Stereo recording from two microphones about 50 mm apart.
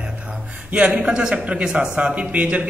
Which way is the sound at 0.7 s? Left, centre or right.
Right.